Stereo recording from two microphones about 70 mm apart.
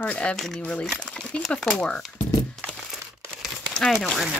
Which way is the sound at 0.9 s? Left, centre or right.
Centre.